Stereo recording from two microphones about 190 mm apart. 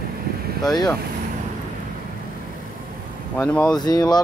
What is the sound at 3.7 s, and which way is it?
Speech, 20° left (ahead or behind).